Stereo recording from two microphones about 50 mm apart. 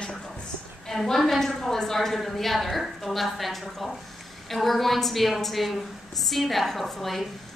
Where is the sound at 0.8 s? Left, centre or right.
Centre.